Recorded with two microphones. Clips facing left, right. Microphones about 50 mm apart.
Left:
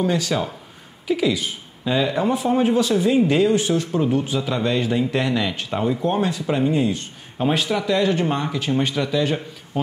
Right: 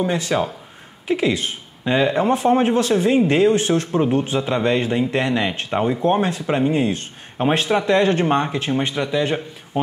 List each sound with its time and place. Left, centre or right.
0.0 s speech: right